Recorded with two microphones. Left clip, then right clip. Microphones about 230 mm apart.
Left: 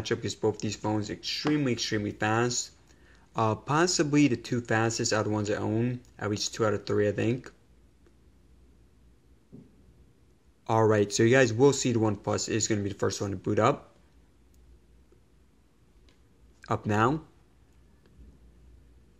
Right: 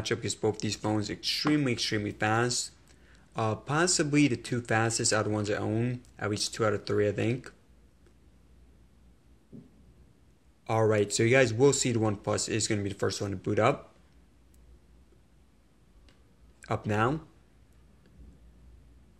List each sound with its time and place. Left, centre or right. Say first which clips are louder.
0.0 s speech: left 1 dB; centre
10.6 s speech: left 2 dB; centre
16.6 s speech: left 2 dB; centre